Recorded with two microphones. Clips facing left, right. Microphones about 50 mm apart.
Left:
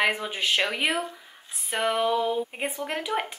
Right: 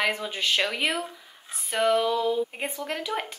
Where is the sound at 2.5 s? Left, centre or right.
Centre.